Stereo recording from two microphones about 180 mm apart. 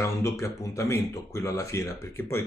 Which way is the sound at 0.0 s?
15° left (ahead or behind).